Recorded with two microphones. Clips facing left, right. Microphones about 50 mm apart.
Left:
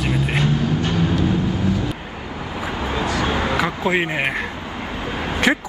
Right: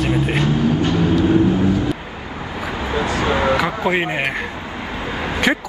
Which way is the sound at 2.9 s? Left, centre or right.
Right.